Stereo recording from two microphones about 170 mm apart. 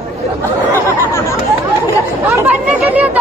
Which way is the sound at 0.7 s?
15° left (ahead or behind).